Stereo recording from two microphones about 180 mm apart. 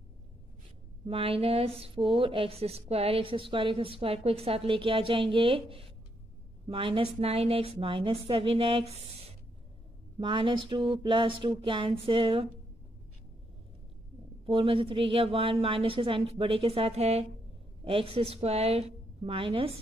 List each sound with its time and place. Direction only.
1.0 s speech: 30° right (ahead or behind)
10.1 s speech: 25° right (ahead or behind)
14.4 s speech: 30° right (ahead or behind)